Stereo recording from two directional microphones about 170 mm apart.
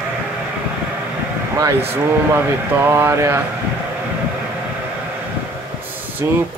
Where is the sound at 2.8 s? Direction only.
15° right (ahead or behind).